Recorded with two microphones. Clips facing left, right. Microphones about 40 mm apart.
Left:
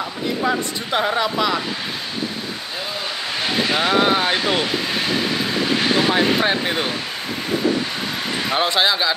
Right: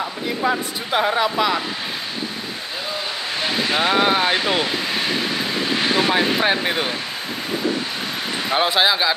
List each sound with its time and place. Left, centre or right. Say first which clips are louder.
0.0 s speech: even; centre
3.7 s speech: even; centre
5.9 s speech: even; centre
8.5 s a man's voice: right 1 dB; centre